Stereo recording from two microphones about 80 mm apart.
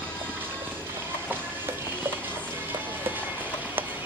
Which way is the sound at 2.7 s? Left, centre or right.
Right.